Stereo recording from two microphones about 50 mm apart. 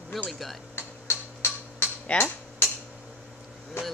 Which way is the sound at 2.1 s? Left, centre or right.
Left.